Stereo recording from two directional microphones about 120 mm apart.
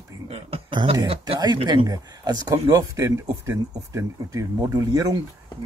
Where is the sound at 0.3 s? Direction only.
45° right (ahead or behind).